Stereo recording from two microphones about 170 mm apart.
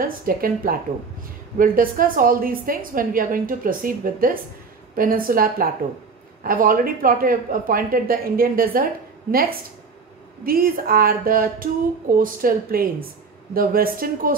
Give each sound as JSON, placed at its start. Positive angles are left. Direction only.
{"t": 0.0, "sound": "a woman's voice", "side_deg": -60}